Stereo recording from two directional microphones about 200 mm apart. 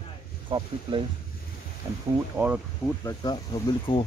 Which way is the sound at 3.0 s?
20° left (ahead or behind).